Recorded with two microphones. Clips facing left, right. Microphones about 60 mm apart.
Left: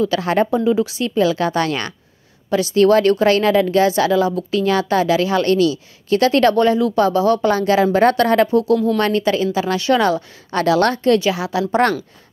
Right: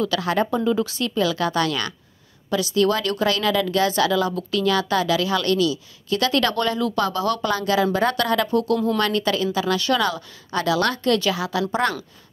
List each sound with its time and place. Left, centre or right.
0.1 s a woman's voice: left
0.7 s speech: centre
1.1 s a woman's voice: left
8.5 s a woman's voice: centre; by 11.1 s left
11.1 s a woman's voice: left
11.8 s speech: left